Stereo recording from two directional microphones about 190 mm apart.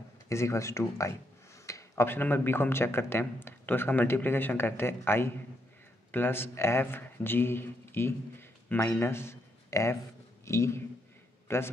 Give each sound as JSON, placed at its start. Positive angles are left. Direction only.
{"t": 0.3, "sound": "a man's voice", "side_deg": 15}